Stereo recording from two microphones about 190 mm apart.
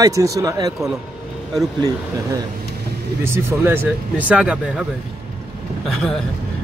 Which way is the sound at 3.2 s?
10° right (ahead or behind).